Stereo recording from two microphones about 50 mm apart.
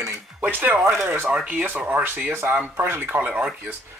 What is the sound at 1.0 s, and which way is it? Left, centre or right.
Speech, right.